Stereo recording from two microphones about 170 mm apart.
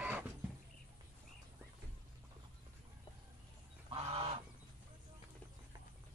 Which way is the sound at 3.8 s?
35° right (ahead or behind).